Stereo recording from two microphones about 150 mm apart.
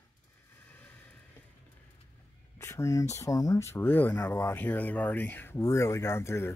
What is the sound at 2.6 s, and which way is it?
Speech, 20° left (ahead or behind).